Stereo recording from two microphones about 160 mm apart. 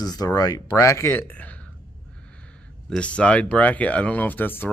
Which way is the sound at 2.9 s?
5° left (ahead or behind).